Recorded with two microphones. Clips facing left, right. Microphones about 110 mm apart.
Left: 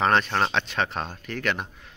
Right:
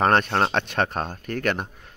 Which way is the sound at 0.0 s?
50° right (ahead or behind).